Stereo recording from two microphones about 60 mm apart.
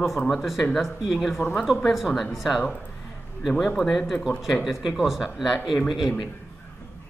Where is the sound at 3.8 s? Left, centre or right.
Centre.